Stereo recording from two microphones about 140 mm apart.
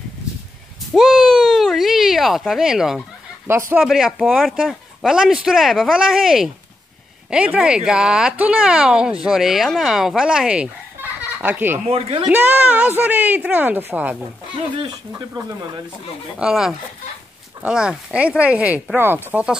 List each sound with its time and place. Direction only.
0.9 s a sound: centre (ahead or behind)
3.4 s speech: 15° right (ahead or behind)
3.8 s speech: centre (ahead or behind)
11.8 s speech: 45° right (ahead or behind)
12.3 s speech: 10° right (ahead or behind)
14.8 s speech: 25° right (ahead or behind)
16.3 s speech: 5° right (ahead or behind)